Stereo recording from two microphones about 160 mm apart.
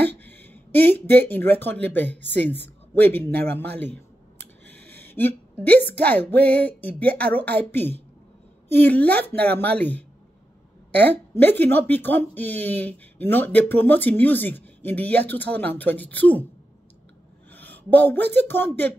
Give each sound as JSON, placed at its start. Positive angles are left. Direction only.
{"t": 0.1, "sound": "a sound", "side_deg": 10}
{"t": 1.0, "sound": "speech", "side_deg": 10}
{"t": 3.6, "sound": "a man's voice", "side_deg": -90}
{"t": 4.9, "sound": "speech", "side_deg": 15}
{"t": 17.5, "sound": "speech", "side_deg": 10}